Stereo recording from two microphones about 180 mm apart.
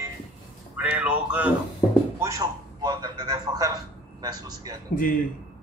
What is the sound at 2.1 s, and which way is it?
A man's voice, 15° right (ahead or behind).